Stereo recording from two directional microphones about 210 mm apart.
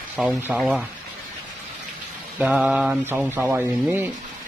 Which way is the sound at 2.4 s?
5° right (ahead or behind).